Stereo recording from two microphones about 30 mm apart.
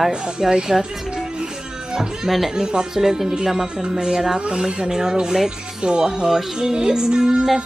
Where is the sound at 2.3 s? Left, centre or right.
Centre.